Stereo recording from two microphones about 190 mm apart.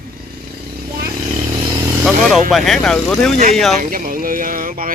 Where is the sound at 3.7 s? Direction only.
50° right (ahead or behind).